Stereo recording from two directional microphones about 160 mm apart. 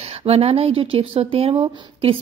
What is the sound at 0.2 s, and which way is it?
Speech, 40° right (ahead or behind).